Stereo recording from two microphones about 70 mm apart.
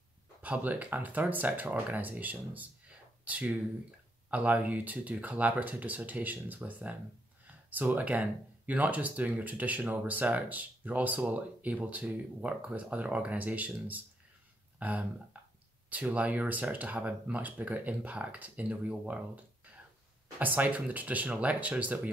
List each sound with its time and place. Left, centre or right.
0.4 s speech: right
15.3 s a sound: right
15.9 s speech: right